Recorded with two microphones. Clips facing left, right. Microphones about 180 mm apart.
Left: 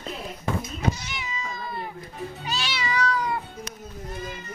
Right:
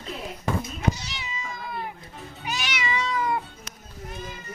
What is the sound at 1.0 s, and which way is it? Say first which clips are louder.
Cat: left 2 dB; 30° right (ahead or behind).